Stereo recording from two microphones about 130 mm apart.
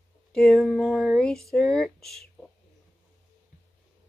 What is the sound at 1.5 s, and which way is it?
Speech, 5° left (ahead or behind).